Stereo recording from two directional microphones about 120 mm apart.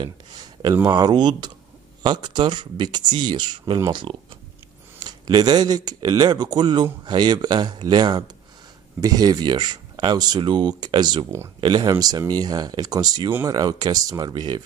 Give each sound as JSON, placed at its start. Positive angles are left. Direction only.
{"t": 0.0, "sound": "a man's voice", "side_deg": -35}